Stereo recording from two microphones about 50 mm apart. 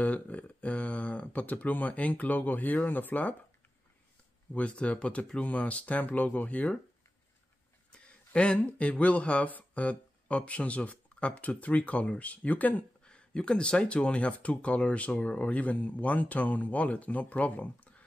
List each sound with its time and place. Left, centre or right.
0.0 s speech: left
4.6 s speech: left
7.9 s speech: left
13.0 s speech: centre